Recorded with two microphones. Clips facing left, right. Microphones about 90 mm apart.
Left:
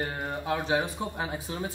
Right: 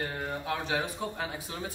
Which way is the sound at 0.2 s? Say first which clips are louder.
Left 3 dB; 20° left (ahead or behind).